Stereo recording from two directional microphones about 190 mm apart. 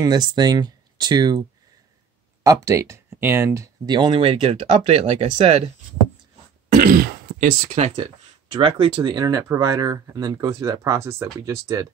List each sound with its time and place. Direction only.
0.0 s speech: 20° right (ahead or behind)
2.4 s speech: 15° right (ahead or behind); by 5.7 s 35° right (ahead or behind)
6.7 s throat clearing: 50° right (ahead or behind)
7.7 s speech: 35° right (ahead or behind); by 11.9 s 15° right (ahead or behind)